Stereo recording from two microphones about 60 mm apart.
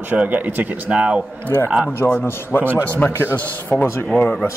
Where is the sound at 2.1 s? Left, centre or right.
Left.